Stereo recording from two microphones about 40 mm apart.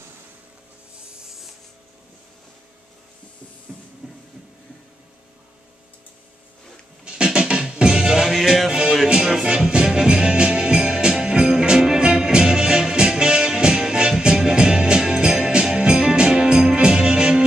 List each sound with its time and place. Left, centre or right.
1.1 s rub: centre
7.1 s music: right
8.3 s music: centre
9.0 s music: right